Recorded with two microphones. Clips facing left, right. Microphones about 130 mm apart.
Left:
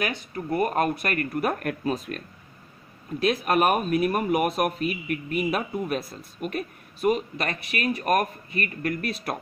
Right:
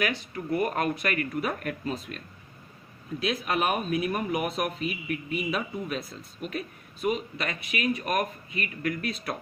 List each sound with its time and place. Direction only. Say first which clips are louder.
0.1 s speech: left 1 dB; 40° left (ahead or behind)